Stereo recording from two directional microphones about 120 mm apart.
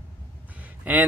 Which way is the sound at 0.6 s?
15° right (ahead or behind).